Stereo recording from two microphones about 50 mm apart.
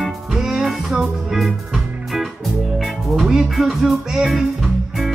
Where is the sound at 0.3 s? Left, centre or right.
Centre.